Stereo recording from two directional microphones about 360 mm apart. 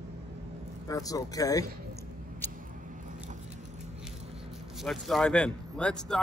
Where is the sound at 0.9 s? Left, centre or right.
Centre.